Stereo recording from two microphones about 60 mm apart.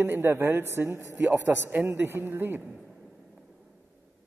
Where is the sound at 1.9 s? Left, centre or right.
Right.